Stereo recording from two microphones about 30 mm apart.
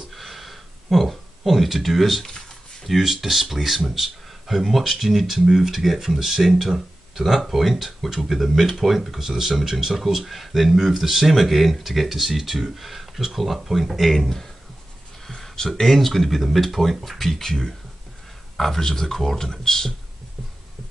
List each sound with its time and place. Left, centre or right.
0.1 s a sound: centre
3.0 s speech: centre
9.2 s speech: centre
15.2 s a sound: centre
15.5 s speech: left
15.8 s speech: centre
17.3 s speech: centre